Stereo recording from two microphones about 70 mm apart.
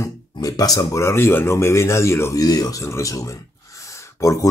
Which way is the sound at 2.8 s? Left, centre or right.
Left.